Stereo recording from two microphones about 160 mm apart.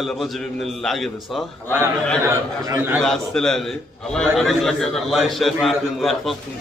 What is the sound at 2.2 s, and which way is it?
Speech, 15° right (ahead or behind).